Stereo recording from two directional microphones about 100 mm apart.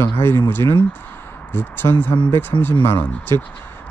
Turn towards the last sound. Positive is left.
turn(degrees=25)  # may be behind; listen again after turning